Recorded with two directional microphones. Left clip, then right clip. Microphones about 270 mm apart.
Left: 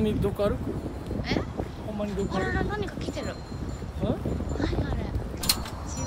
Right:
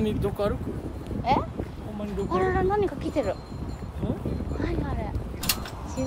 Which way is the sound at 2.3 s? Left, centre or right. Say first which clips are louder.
Right 10 dB; right.